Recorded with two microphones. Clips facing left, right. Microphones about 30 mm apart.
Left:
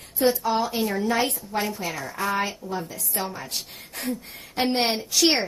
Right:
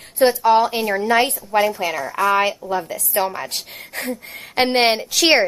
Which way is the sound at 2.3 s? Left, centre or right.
Right.